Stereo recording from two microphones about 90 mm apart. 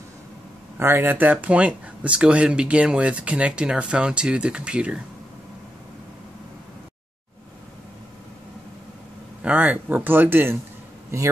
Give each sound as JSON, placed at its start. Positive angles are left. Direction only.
{"t": 0.7, "sound": "speech", "side_deg": -25}
{"t": 9.4, "sound": "speech", "side_deg": -15}